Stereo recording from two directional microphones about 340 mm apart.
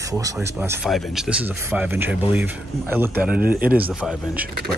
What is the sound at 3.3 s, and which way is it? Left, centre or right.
Speech, right.